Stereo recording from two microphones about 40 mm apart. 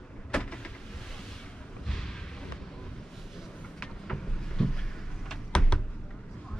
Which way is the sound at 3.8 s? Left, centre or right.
Centre.